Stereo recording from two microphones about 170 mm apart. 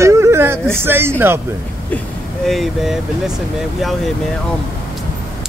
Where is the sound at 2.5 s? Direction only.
Centre (ahead or behind).